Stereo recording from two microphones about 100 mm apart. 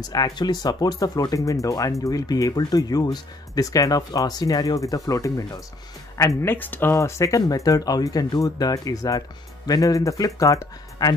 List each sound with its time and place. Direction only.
0.0 s speech: 40° left (ahead or behind); by 7.0 s 20° left (ahead or behind)
7.0 s speech: 30° left (ahead or behind)